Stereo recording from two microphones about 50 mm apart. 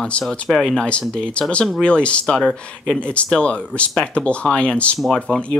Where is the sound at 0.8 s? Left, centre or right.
Left.